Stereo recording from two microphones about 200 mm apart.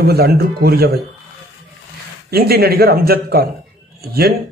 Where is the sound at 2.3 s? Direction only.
50° right (ahead or behind).